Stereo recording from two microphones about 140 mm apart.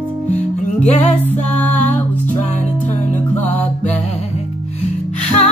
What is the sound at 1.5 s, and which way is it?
Music, 10° left (ahead or behind).